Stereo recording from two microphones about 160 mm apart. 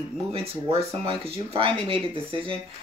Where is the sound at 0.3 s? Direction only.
35° right (ahead or behind).